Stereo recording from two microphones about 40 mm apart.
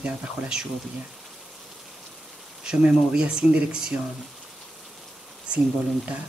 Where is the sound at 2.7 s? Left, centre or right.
Right.